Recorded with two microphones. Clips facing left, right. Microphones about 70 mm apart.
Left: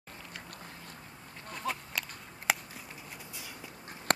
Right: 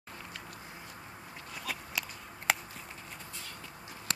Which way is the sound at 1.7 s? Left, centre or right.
Centre.